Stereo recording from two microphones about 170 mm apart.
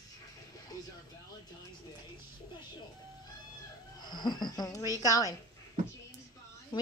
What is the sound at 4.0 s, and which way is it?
Speech, 25° left (ahead or behind).